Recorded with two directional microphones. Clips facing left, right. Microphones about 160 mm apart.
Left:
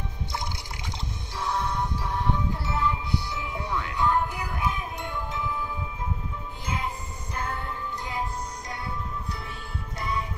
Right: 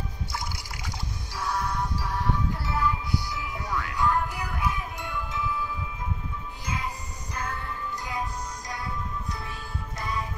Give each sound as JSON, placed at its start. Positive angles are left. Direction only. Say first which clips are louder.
{"t": 1.4, "sound": "music", "louder": "left 1 dB", "side_deg": 20}
{"t": 8.1, "sound": "music", "louder": "left 1 dB", "side_deg": 25}
{"t": 9.9, "sound": "music", "louder": "left 2 dB", "side_deg": 25}